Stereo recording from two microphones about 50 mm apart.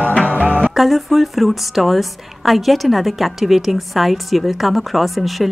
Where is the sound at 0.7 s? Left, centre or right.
Centre.